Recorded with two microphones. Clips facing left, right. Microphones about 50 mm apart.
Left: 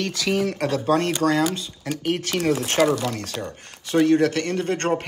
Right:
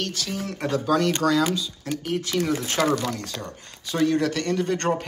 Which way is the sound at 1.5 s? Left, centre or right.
Left.